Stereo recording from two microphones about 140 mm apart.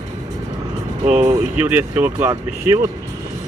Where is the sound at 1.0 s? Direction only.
55° right (ahead or behind).